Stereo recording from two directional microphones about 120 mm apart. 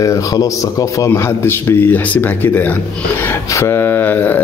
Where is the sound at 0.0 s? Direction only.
30° left (ahead or behind).